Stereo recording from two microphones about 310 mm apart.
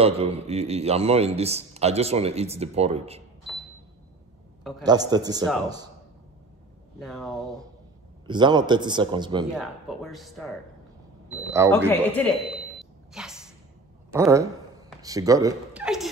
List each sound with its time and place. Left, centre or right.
0.0 s a man's voice: centre
4.8 s a man's voice: centre
7.0 s speech: centre
8.3 s a man's voice: centre
9.5 s speech: centre
11.6 s a man's voice: centre
12.2 s a sound: centre